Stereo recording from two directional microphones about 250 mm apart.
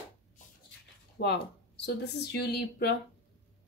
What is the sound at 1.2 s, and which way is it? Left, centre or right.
Speech, left.